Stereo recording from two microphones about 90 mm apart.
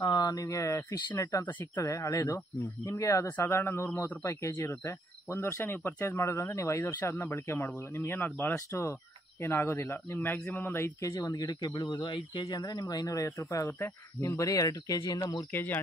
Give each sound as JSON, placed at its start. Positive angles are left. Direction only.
{"t": 0.0, "sound": "speech", "side_deg": 45}
{"t": 3.3, "sound": "speech", "side_deg": 25}
{"t": 4.3, "sound": "speech", "side_deg": 35}
{"t": 11.1, "sound": "speech", "side_deg": 45}
{"t": 12.4, "sound": "speech", "side_deg": 45}
{"t": 15.5, "sound": "speech", "side_deg": 20}